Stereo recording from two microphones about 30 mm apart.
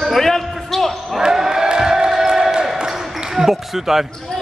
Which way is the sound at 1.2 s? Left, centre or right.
Centre.